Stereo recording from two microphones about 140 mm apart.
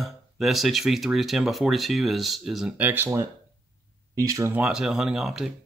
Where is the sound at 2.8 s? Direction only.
15° right (ahead or behind).